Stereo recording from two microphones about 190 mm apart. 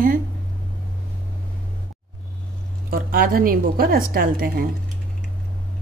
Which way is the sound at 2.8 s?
50° right (ahead or behind).